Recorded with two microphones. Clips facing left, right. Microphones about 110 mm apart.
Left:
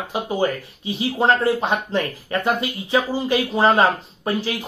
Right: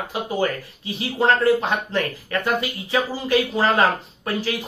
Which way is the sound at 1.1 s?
20° left (ahead or behind).